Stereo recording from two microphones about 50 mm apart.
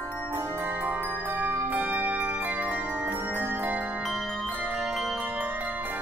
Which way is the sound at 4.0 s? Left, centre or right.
Centre.